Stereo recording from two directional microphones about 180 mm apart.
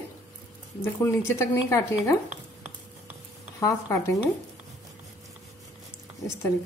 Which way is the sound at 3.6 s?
20° left (ahead or behind).